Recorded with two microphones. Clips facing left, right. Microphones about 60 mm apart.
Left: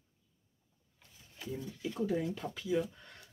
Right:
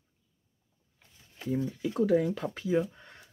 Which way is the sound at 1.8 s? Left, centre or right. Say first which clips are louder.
Right 7 dB; right.